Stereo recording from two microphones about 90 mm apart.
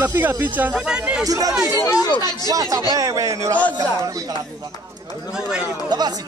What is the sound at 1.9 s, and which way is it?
Speech, 45° left (ahead or behind).